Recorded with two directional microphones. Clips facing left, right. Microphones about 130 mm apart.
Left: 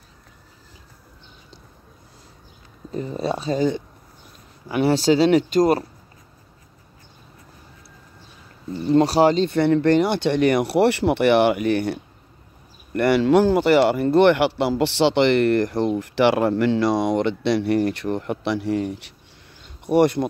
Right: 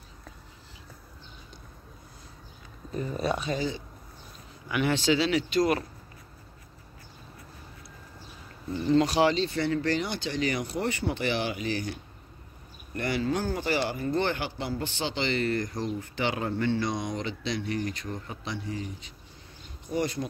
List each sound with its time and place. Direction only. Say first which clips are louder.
2.9 s speech: left 4 dB; 25° left (ahead or behind)
3.5 s speech: left 10 dB; 50° left (ahead or behind)
4.6 s speech: left 8 dB; 35° left (ahead or behind)
8.9 s speech: left 7 dB; 40° left (ahead or behind); by 20.2 s 60° left (ahead or behind)